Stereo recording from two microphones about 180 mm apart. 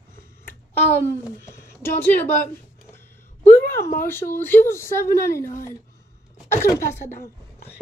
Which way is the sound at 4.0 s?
15° left (ahead or behind).